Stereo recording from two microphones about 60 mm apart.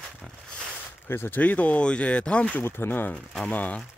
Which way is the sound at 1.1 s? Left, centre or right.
Left.